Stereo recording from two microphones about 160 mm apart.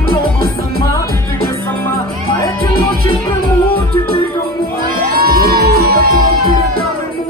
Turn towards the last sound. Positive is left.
turn(degrees=-70)  # may be behind; listen again after turning